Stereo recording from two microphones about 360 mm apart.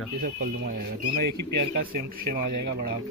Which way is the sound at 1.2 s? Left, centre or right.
Right.